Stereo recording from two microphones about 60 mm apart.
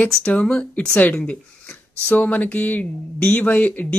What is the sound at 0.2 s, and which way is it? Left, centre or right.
Speech, centre.